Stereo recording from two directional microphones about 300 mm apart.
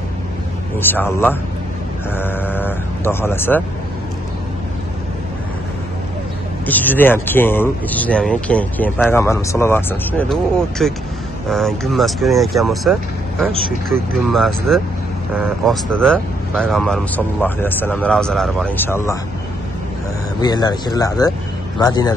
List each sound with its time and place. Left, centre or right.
0.7 s speech: centre
6.6 s speech: centre
20.3 s speech: centre